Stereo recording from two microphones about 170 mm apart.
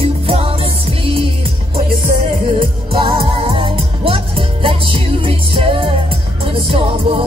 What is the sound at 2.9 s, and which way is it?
Music, 30° right (ahead or behind).